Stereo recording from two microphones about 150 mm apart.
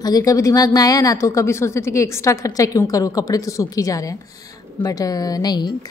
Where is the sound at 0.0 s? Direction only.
25° left (ahead or behind).